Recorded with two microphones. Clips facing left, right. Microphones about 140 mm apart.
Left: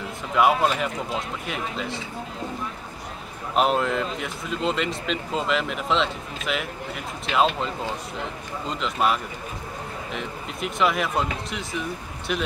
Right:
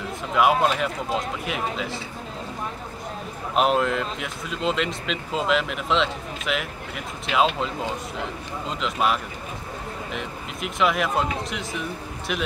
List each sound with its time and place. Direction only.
0.3 s speech: centre (ahead or behind)
3.5 s speech: centre (ahead or behind)